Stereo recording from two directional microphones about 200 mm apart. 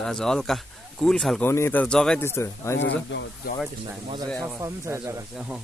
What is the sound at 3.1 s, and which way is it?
Speech, 60° left (ahead or behind).